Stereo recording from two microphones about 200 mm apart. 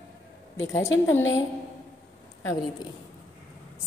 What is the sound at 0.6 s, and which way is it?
Speech, 15° left (ahead or behind).